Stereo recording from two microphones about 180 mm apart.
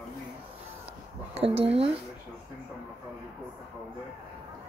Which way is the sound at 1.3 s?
35° right (ahead or behind).